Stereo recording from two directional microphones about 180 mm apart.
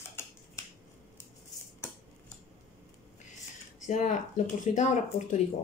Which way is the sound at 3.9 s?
45° left (ahead or behind).